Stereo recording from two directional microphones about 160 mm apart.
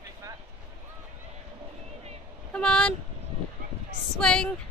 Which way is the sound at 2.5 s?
5° left (ahead or behind).